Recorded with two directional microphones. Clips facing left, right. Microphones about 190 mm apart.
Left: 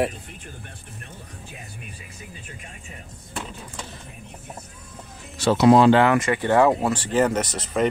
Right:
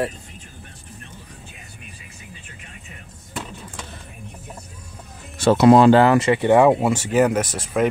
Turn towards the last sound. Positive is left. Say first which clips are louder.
# right 2 dB
turn(degrees=-5)  # may be behind; listen again after turning